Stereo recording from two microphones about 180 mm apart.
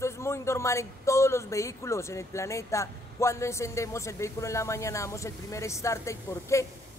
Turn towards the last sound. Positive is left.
turn(degrees=15)  # may be behind; listen again after turning